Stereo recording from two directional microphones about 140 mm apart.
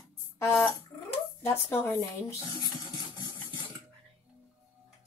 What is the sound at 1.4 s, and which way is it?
Speech, 15° left (ahead or behind).